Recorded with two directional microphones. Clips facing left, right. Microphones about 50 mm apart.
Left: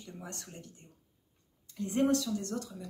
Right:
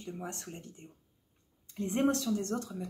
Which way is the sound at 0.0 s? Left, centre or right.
Right.